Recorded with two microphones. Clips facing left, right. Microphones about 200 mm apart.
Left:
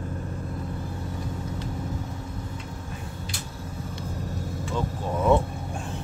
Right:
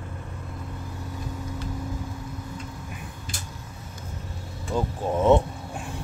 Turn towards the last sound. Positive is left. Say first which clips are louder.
# right 2 dB
turn(degrees=-20)  # may be behind; listen again after turning